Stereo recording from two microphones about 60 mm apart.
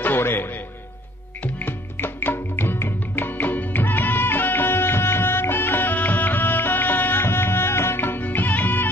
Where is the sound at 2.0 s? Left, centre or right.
Left.